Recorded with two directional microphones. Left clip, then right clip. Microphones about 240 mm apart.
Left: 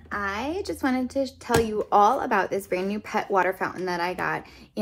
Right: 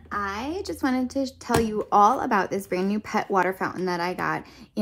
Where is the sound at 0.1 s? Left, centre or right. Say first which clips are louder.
Even; centre.